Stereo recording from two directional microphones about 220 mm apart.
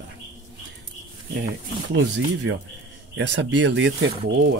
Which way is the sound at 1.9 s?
55° right (ahead or behind).